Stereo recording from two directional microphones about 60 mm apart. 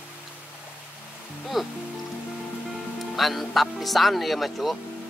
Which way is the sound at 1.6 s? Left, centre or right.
Centre.